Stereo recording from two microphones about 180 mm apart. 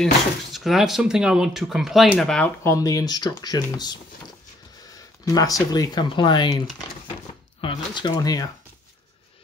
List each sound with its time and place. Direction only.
0.0 s speech: centre (ahead or behind)
2.6 s speech: 20° left (ahead or behind)
5.2 s speech: 20° left (ahead or behind)
7.6 s speech: 25° left (ahead or behind)